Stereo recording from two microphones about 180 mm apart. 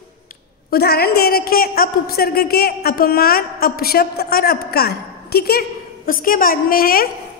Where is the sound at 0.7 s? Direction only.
60° left (ahead or behind).